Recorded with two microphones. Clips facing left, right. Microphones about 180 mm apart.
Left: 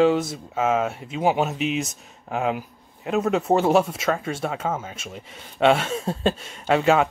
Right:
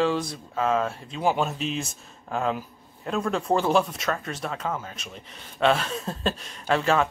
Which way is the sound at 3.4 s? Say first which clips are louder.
Left 2 dB; 25° left (ahead or behind).